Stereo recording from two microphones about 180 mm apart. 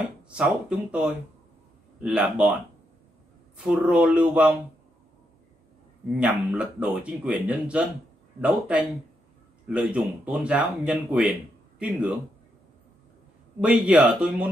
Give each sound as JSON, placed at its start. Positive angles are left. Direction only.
{"t": 0.0, "sound": "speech", "side_deg": -5}
{"t": 3.5, "sound": "speech", "side_deg": -5}
{"t": 6.1, "sound": "speech", "side_deg": -5}
{"t": 13.6, "sound": "speech", "side_deg": -5}